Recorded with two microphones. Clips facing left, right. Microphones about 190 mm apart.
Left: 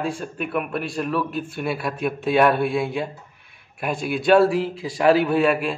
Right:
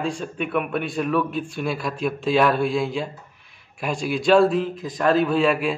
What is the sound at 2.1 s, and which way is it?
Speech, 60° left (ahead or behind).